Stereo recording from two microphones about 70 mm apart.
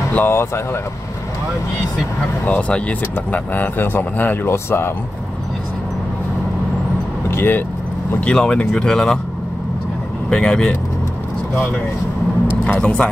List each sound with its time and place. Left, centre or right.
0.1 s speech: left
2.4 s speech: centre; by 4.9 s left
7.2 s speech: left
8.2 s speech: centre
10.3 s speech: centre
12.6 s speech: centre